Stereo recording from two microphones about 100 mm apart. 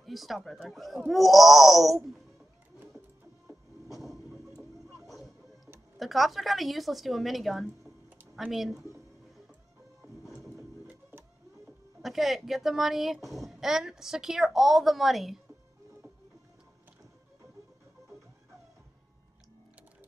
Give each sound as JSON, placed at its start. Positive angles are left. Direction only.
{"t": 0.0, "sound": "a child's voice", "side_deg": 0}
{"t": 3.9, "sound": "vehicle", "side_deg": 0}
{"t": 5.0, "sound": "music", "side_deg": 0}
{"t": 5.9, "sound": "a child's voice", "side_deg": 0}
{"t": 10.9, "sound": "music", "side_deg": -20}
{"t": 12.0, "sound": "a child's voice", "side_deg": -5}